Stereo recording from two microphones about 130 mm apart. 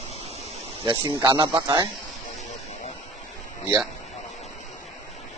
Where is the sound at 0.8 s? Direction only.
35° right (ahead or behind).